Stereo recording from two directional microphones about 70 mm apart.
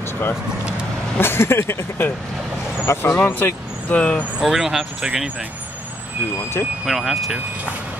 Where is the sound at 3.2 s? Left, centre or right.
Left.